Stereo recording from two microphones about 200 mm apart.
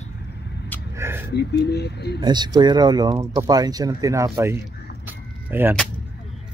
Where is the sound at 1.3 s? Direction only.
55° left (ahead or behind).